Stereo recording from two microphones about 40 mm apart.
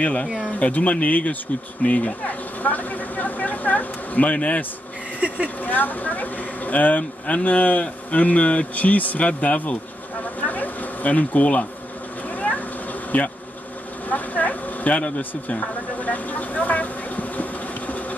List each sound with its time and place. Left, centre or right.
0.0 s speech: left
5.2 s vehicle: right
5.6 s speech: left
10.2 s a sound: left
13.1 s speech: left